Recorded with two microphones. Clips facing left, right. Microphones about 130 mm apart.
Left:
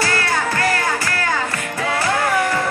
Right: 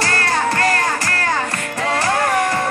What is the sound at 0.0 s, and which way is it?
Music, 40° right (ahead or behind).